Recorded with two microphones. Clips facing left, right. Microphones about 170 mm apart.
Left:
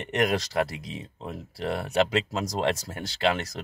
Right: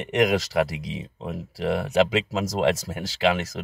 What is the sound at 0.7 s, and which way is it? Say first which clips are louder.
Speech: right 4 dB; 20° right (ahead or behind).